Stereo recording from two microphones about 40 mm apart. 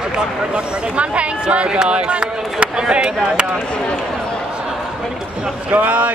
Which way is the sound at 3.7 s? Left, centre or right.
Left.